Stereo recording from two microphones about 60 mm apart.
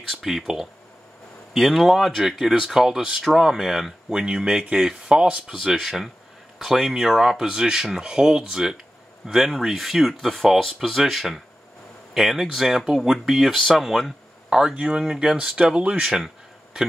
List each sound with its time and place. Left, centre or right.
0.2 s speech: centre
5.5 s speech: centre
14.6 s speech: centre